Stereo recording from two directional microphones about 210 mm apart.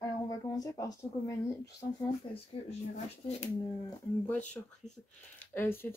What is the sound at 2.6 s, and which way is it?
Speech, 25° left (ahead or behind).